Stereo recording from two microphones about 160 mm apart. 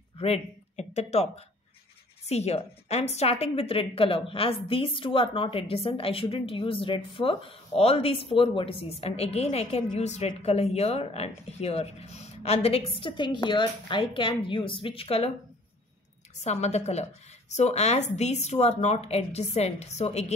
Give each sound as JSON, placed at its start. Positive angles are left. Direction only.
{"t": 0.2, "sound": "a woman's voice", "side_deg": 40}
{"t": 16.4, "sound": "a woman's voice", "side_deg": 45}